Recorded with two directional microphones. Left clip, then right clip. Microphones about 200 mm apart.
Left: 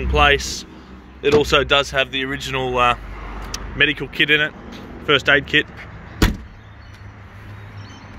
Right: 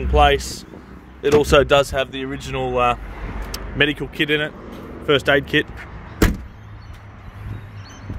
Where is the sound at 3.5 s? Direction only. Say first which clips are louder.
Left 1 dB; 25° right (ahead or behind).